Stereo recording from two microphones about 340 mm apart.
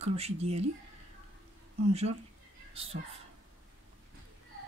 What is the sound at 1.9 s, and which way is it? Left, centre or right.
Speech, centre.